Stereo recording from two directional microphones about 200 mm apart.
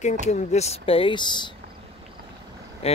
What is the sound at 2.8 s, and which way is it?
Speech, 30° left (ahead or behind).